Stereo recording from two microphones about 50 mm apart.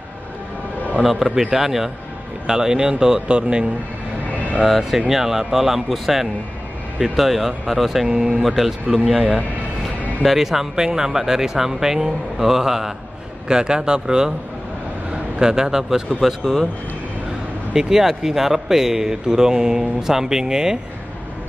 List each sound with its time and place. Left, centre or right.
1.0 s a man's voice: centre
4.4 s a sound: right
5.1 s a man's voice: centre
8.1 s speech: centre
8.4 s a man's voice: centre
10.2 s a man's voice: centre
16.2 s a man's voice: centre
17.7 s speech: centre